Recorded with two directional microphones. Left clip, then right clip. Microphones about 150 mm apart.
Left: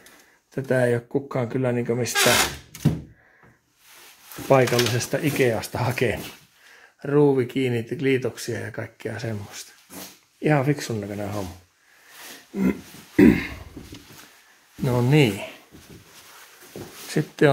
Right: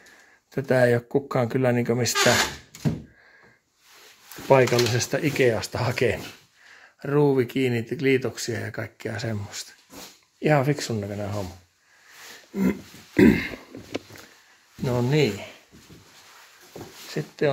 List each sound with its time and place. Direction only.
0.6 s speech: 25° right (ahead or behind)
4.5 s speech: 15° right (ahead or behind)
7.0 s speech: 20° right (ahead or behind)
12.5 s speech: 15° right (ahead or behind)
14.8 s speech: 5° left (ahead or behind)
15.0 s speech: 20° left (ahead or behind)
17.2 s speech: 30° left (ahead or behind)